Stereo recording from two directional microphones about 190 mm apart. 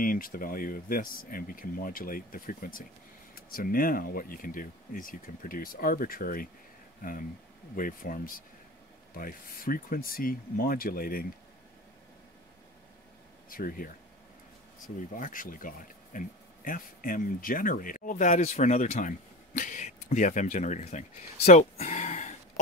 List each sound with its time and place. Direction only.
0.0 s speech: 50° left (ahead or behind)
13.5 s speech: 50° left (ahead or behind)
15.1 s speech: 45° left (ahead or behind)
21.5 s a sound: 35° left (ahead or behind)